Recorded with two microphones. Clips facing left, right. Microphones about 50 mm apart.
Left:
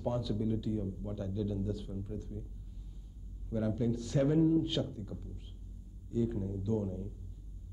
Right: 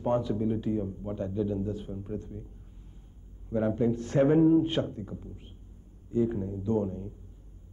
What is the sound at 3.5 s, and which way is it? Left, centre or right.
Speech, right.